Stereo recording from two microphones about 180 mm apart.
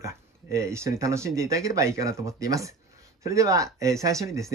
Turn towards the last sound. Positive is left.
turn(degrees=-15)  # may be behind; listen again after turning